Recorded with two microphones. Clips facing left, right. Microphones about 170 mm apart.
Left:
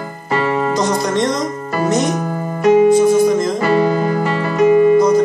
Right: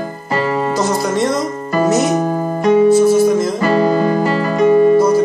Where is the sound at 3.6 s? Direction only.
35° right (ahead or behind).